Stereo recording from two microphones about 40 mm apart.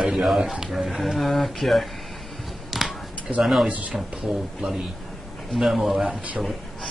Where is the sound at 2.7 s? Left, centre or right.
Centre.